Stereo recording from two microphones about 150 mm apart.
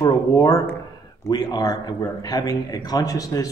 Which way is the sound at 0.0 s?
25° left (ahead or behind).